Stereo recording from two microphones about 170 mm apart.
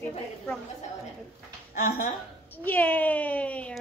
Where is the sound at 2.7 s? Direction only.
10° left (ahead or behind).